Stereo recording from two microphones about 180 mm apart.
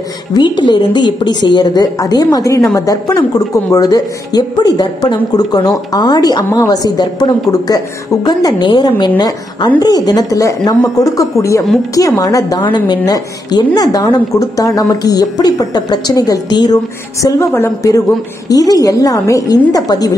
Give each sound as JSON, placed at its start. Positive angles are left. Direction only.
{"t": 0.3, "sound": "a woman's voice", "side_deg": 25}